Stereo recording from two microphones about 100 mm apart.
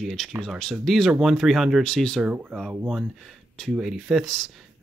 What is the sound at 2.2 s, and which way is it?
Speech, 10° right (ahead or behind).